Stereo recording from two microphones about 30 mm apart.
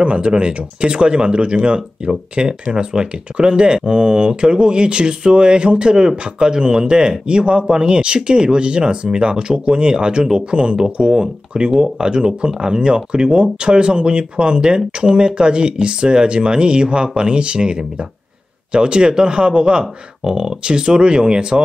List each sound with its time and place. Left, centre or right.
0.0 s speech: right
19.8 s speech: centre